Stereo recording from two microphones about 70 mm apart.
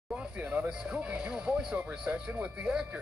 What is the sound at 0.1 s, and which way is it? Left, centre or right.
A woman's voice, centre.